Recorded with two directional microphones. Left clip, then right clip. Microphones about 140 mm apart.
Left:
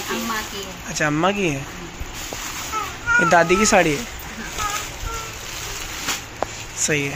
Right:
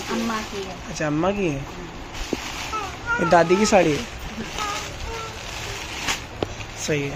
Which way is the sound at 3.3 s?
5° right (ahead or behind).